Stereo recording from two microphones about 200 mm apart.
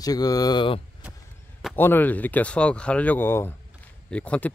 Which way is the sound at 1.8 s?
10° left (ahead or behind).